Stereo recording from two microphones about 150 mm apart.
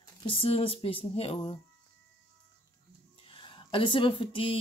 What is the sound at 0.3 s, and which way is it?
Speech, 40° left (ahead or behind).